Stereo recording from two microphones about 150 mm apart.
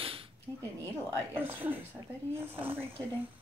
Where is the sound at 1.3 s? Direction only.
15° right (ahead or behind).